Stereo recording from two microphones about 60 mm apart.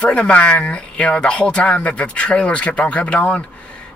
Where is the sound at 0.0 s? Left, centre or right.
Left.